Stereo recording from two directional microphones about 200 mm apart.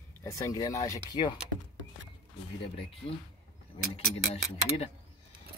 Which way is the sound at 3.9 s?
30° left (ahead or behind).